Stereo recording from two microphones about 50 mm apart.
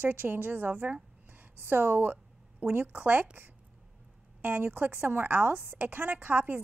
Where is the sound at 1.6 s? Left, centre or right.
Right.